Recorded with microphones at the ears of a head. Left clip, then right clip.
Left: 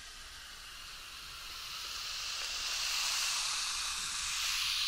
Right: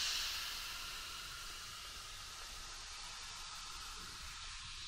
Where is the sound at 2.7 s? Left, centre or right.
Left.